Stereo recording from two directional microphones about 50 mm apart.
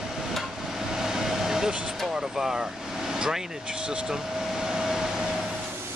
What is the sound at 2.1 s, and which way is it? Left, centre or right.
Vehicle, centre.